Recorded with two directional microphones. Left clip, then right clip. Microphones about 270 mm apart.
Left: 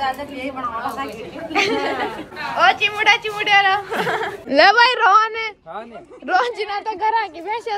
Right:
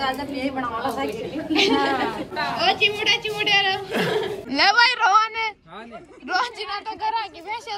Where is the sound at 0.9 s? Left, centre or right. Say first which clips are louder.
Right 1 dB; centre.